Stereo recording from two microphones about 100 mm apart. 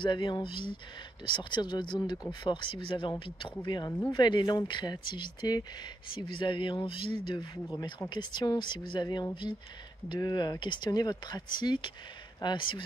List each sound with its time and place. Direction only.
0.0 s speech: 50° left (ahead or behind)
6.1 s speech: 55° left (ahead or behind)
8.1 s speech: 50° left (ahead or behind)